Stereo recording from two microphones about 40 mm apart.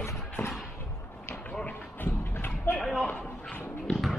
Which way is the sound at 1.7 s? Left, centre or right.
Left.